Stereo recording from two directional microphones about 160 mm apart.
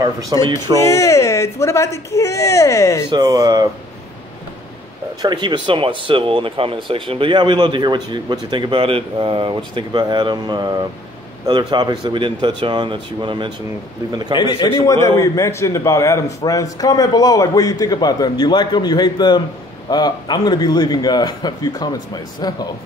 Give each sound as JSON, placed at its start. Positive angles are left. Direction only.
{"t": 0.0, "sound": "speech", "side_deg": -25}
{"t": 0.8, "sound": "a man's voice", "side_deg": 20}
{"t": 3.1, "sound": "speech", "side_deg": -25}
{"t": 5.2, "sound": "speech", "side_deg": -25}
{"t": 14.3, "sound": "a man's voice", "side_deg": 30}
{"t": 14.9, "sound": "a man's voice", "side_deg": 20}